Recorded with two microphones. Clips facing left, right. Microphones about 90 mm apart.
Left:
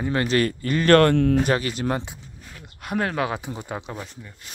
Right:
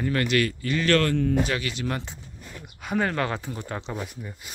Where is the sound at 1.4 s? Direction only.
40° left (ahead or behind).